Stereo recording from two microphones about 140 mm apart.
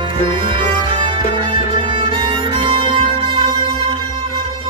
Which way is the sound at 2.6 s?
40° right (ahead or behind).